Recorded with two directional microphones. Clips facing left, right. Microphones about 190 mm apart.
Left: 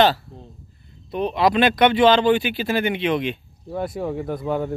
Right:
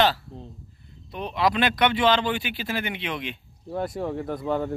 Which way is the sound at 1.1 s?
25° left (ahead or behind).